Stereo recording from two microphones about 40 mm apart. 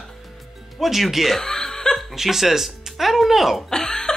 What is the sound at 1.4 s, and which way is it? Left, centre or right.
Music, centre.